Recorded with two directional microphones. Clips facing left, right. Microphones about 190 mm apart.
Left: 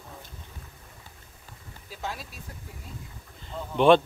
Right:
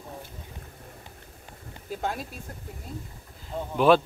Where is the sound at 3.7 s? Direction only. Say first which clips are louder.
Left 1 dB; 5° right (ahead or behind).